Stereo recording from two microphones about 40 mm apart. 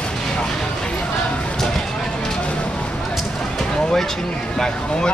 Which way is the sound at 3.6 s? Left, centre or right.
Centre.